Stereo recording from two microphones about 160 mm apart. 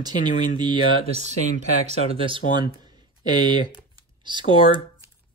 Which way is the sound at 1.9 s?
35° right (ahead or behind).